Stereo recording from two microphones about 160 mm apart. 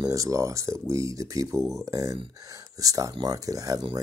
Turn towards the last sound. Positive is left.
turn(degrees=-25)  # may be behind; listen again after turning